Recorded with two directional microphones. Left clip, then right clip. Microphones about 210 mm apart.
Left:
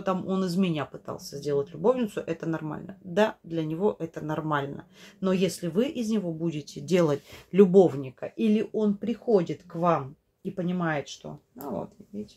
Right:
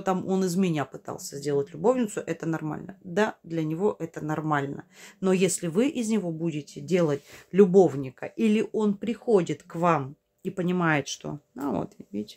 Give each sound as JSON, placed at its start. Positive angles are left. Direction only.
{"t": 0.0, "sound": "speech", "side_deg": -20}
{"t": 6.4, "sound": "speech", "side_deg": -10}